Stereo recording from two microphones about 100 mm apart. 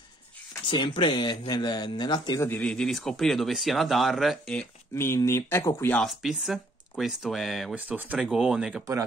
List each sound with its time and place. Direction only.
0.7 s speech: 55° left (ahead or behind)
2.3 s speech: 25° left (ahead or behind)
2.6 s speech: 5° left (ahead or behind)
4.9 s speech: 25° left (ahead or behind)
5.9 s speech: centre (ahead or behind)
7.7 s speech: 15° right (ahead or behind)